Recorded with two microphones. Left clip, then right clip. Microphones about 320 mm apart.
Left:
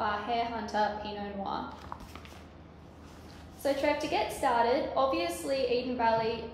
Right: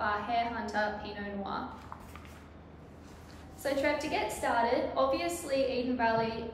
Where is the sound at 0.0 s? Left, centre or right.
Centre.